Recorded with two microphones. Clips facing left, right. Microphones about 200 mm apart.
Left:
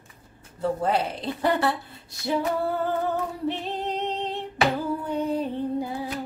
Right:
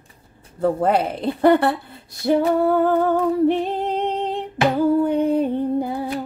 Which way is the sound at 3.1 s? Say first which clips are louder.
Right 11 dB; 55° right (ahead or behind).